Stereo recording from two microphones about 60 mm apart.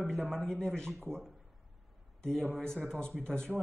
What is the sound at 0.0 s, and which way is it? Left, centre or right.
Speech, centre.